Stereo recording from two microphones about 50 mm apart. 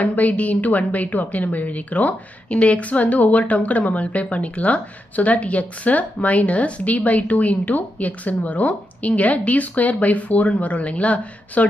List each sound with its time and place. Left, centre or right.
0.0 s a woman's voice: left